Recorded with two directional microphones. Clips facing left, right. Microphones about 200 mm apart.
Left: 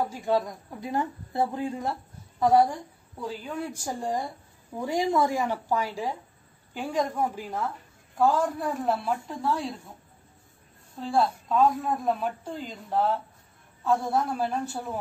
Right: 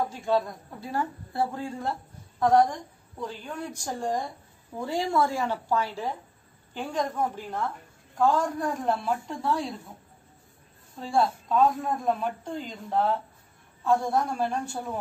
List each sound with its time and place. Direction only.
0.1 s speech: 15° left (ahead or behind)
2.4 s a woman's voice: 10° left (ahead or behind)
11.0 s speech: centre (ahead or behind)